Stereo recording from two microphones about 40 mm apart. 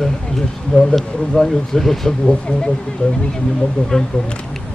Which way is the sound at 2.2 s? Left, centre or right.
Left.